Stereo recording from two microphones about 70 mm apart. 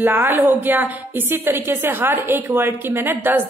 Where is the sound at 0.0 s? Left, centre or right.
Right.